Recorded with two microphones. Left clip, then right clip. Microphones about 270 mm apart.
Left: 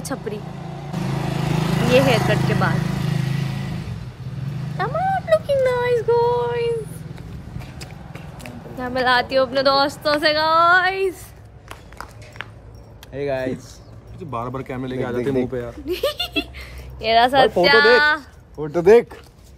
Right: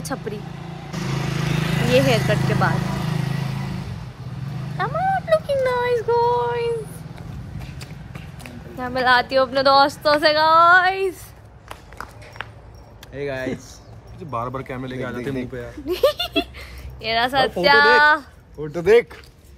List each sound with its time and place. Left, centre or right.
0.0 s speech: centre
0.6 s vehicle: left
2.0 s a woman's voice: centre
2.9 s vehicle: centre
4.7 s a sound: centre
8.4 s a woman's voice: centre
11.7 s a sound: centre
13.1 s speech: centre
15.1 s speech: left
15.9 s speech: centre
17.0 s speech: centre
17.6 s a woman's voice: centre
18.7 s speech: left